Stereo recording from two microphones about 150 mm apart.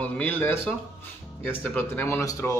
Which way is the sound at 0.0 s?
10° left (ahead or behind).